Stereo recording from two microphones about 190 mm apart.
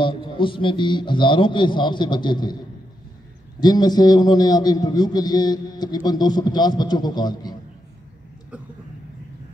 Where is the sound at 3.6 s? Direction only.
20° left (ahead or behind).